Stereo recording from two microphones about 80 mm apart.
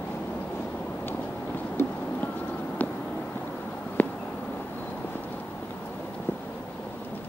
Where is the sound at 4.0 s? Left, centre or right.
Left.